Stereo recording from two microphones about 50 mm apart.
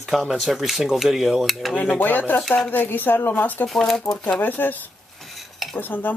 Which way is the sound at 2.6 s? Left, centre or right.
Left.